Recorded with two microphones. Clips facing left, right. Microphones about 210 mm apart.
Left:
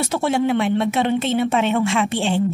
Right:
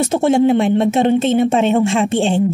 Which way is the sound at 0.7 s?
45° right (ahead or behind).